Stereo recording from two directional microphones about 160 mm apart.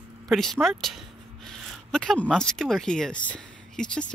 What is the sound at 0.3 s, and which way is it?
Speech, centre (ahead or behind).